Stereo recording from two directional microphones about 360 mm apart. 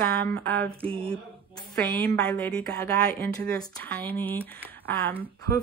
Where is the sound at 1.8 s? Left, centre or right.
Centre.